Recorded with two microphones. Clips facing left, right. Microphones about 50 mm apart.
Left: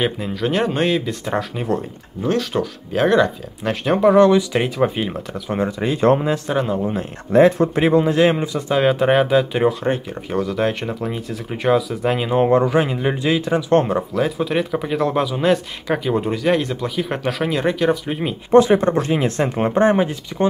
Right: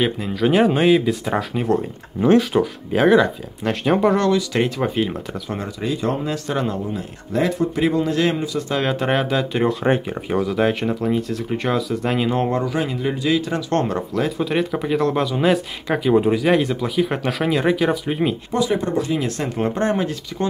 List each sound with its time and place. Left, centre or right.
0.0 s speech: centre
4.2 s speech: left
4.6 s speech: centre
5.5 s speech: left
6.2 s speech: left
6.5 s speech: centre
6.8 s speech: left
8.6 s speech: centre
12.4 s speech: left
13.5 s speech: centre
18.5 s speech: left